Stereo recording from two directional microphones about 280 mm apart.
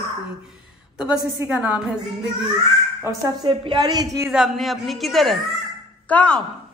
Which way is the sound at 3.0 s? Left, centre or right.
Centre.